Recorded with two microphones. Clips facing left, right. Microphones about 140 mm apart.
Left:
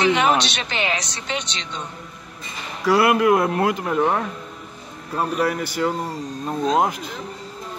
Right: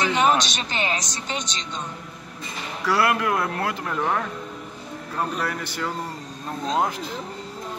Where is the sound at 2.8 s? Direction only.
15° left (ahead or behind).